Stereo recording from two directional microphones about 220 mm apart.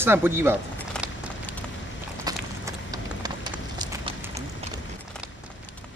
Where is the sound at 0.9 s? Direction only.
5° left (ahead or behind).